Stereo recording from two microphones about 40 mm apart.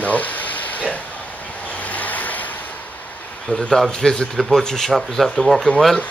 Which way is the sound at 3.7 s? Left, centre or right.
Centre.